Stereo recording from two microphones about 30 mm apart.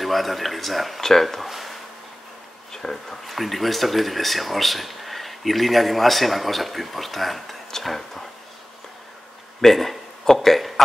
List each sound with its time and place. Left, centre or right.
0.0 s speech: centre
2.7 s speech: centre
3.1 s speech: centre
9.6 s speech: centre